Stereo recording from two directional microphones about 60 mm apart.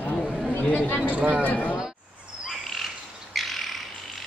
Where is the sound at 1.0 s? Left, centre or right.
Right.